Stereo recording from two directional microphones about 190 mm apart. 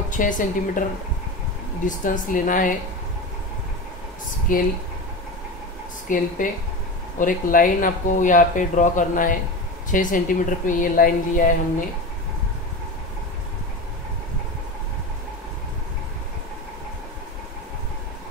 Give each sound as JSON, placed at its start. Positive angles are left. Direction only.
{"t": 0.1, "sound": "speech", "side_deg": 45}
{"t": 1.9, "sound": "speech", "side_deg": 45}
{"t": 4.5, "sound": "speech", "side_deg": 45}
{"t": 6.0, "sound": "speech", "side_deg": 45}